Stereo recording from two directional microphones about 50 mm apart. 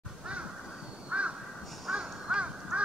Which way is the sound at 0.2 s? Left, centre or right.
Right.